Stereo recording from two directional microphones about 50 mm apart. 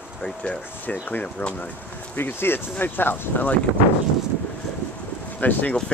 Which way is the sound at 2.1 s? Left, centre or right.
Left.